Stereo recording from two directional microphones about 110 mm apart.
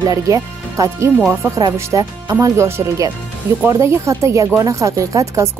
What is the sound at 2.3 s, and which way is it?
Speech, 25° right (ahead or behind).